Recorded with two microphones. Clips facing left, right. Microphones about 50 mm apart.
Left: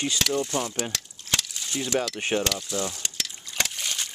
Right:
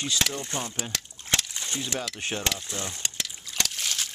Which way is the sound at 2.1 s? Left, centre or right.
Left.